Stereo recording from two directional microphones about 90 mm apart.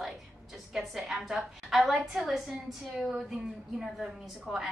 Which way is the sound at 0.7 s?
Centre (ahead or behind).